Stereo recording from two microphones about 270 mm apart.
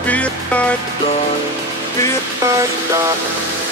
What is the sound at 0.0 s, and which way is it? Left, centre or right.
Speech, centre.